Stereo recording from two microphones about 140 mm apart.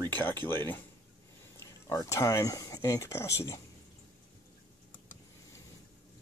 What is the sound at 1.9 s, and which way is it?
Speech, 20° left (ahead or behind).